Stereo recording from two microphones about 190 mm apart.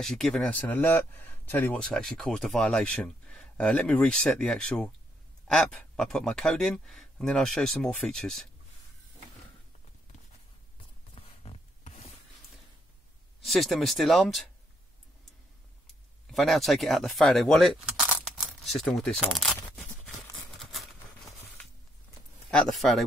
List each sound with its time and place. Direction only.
0.0 s speech: centre (ahead or behind)
11.1 s a sound: 30° left (ahead or behind)
13.4 s speech: centre (ahead or behind)
16.3 s speech: centre (ahead or behind)
22.5 s speech: centre (ahead or behind)